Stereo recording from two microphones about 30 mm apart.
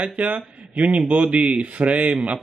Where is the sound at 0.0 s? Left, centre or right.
Right.